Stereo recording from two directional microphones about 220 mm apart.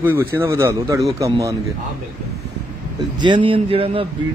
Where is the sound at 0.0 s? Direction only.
10° right (ahead or behind).